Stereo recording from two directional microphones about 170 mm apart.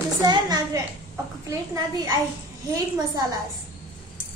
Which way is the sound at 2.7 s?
20° right (ahead or behind).